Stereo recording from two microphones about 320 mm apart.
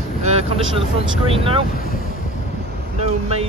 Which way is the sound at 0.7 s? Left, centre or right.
Centre.